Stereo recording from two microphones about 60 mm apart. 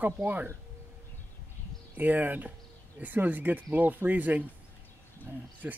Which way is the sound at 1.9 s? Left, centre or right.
Right.